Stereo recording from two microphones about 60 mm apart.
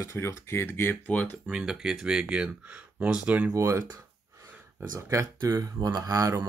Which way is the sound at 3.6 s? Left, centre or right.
Right.